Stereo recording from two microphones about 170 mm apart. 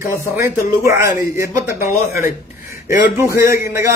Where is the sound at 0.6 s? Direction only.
50° left (ahead or behind).